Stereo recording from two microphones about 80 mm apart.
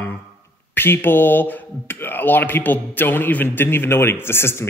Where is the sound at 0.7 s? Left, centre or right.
Left.